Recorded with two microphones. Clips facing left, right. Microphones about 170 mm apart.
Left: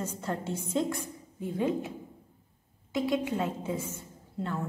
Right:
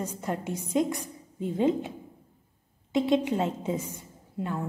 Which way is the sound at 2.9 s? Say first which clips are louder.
Right 5 dB; 25° right (ahead or behind).